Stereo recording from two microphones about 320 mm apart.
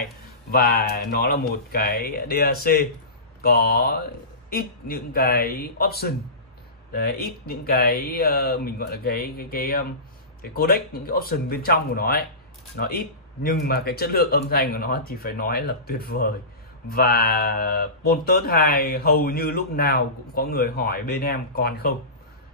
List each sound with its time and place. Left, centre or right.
0.0 s speech: left